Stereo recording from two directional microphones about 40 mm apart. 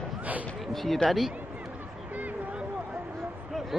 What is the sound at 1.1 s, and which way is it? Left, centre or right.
Speech, centre.